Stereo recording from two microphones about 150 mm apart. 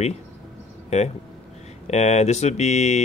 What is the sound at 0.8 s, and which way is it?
Speech, 45° left (ahead or behind).